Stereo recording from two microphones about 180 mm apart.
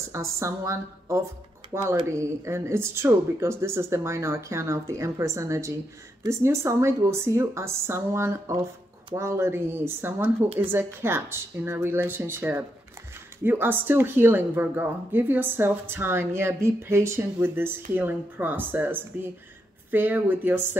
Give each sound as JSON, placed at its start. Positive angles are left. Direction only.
{"t": 0.1, "sound": "speech", "side_deg": -15}